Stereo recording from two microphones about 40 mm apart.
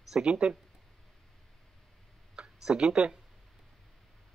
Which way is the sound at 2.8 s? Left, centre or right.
Centre.